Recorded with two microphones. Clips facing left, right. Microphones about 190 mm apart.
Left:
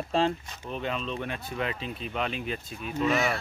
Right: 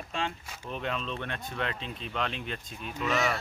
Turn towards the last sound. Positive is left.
turn(degrees=10)  # may be behind; listen again after turning